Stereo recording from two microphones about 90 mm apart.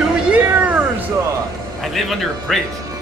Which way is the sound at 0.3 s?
15° right (ahead or behind).